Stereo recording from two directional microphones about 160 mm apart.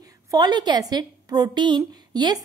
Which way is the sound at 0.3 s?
25° right (ahead or behind).